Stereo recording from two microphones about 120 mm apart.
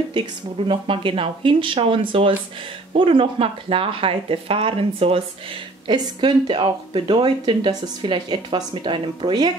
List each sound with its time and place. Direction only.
0.7 s speech: 45° right (ahead or behind)
5.9 s speech: 40° right (ahead or behind)